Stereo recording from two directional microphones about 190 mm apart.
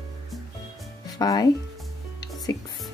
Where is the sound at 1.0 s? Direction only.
20° left (ahead or behind).